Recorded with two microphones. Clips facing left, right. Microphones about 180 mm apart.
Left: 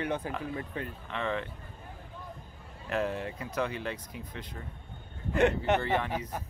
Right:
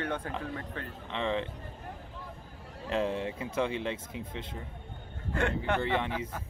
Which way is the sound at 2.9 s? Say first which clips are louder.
Right 1 dB; 25° right (ahead or behind).